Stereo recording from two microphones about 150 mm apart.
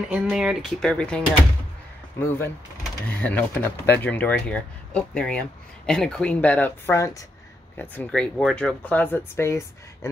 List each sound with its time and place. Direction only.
0.1 s speech: 5° right (ahead or behind); by 9.7 s 15° left (ahead or behind)